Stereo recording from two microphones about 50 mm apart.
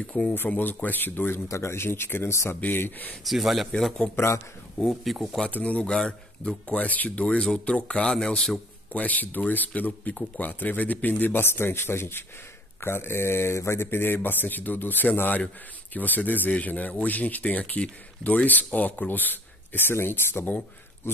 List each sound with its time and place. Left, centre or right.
0.0 s speech: centre
0.5 s speech: left
1.5 s speech: left
3.3 s speech: centre
4.1 s speech: left
4.7 s speech: centre
5.5 s speech: left
5.9 s speech: centre
8.9 s speech: left